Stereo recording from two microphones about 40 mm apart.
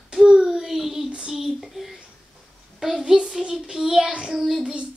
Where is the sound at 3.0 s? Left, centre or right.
Centre.